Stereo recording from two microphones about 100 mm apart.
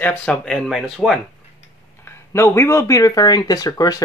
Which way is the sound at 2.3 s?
25° left (ahead or behind).